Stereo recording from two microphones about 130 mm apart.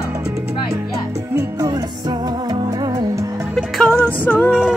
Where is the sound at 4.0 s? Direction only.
10° left (ahead or behind).